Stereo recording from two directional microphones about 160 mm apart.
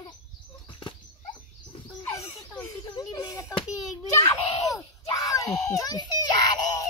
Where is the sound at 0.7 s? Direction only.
30° left (ahead or behind).